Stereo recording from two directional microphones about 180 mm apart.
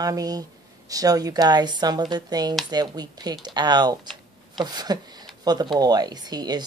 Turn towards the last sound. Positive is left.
turn(degrees=-20)  # may be behind; listen again after turning